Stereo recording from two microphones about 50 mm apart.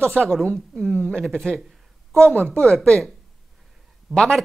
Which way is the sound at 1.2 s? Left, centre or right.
Centre.